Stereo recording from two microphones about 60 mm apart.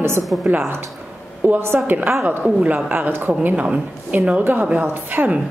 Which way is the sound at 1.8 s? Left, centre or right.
Right.